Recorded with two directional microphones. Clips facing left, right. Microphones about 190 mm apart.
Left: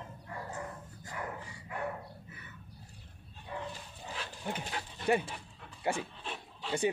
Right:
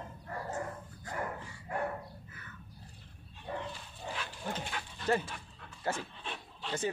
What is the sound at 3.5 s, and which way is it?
Dog, 45° right (ahead or behind).